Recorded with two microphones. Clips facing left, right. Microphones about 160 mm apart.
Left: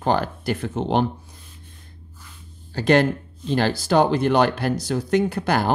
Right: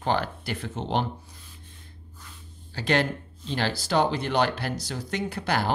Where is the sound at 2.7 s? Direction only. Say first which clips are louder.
Left 7 dB; 45° left (ahead or behind).